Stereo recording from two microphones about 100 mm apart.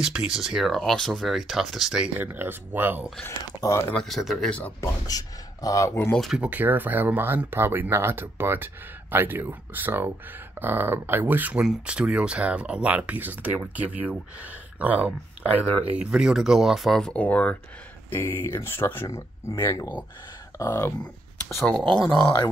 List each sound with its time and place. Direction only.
0.0 s speech: 5° right (ahead or behind)
2.1 s speech: 20° right (ahead or behind)
3.3 s speech: 30° left (ahead or behind)
4.0 s speech: centre (ahead or behind)
4.5 s speech: 15° left (ahead or behind)
4.7 s speech: 35° left (ahead or behind)
6.3 s speech: 15° right (ahead or behind); by 20.9 s 30° left (ahead or behind)
21.5 s speech: 5° left (ahead or behind)
22.2 s speech: 20° left (ahead or behind)